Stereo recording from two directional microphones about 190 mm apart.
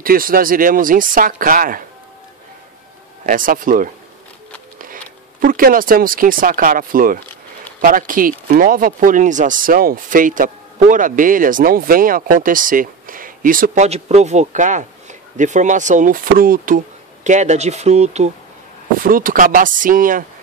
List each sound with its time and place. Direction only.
0.0 s speech: 50° right (ahead or behind)
3.3 s speech: 45° right (ahead or behind)
4.7 s a sound: 45° right (ahead or behind)
5.4 s speech: 50° right (ahead or behind)
13.8 s speech: 35° right (ahead or behind)
18.9 s speech: 45° right (ahead or behind)